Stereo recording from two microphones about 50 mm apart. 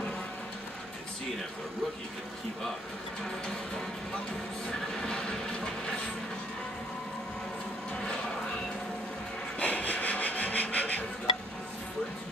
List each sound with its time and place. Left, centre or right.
4.6 s train: centre
9.6 s rub: left